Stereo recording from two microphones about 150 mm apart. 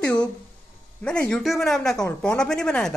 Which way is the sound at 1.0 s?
5° left (ahead or behind).